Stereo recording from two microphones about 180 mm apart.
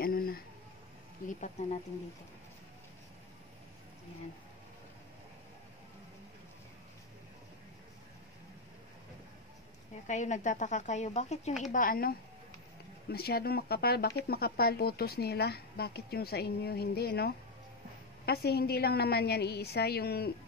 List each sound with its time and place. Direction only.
0.0 s a sound: 55° left (ahead or behind)
1.2 s speech: 40° left (ahead or behind)
10.0 s speech: 40° left (ahead or behind)
11.7 s a woman's voice: 50° left (ahead or behind)